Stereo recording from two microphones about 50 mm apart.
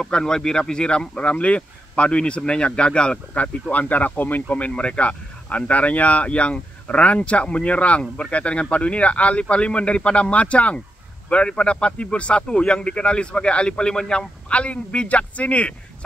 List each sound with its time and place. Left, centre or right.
0.0 s speech: centre
3.7 s speech: left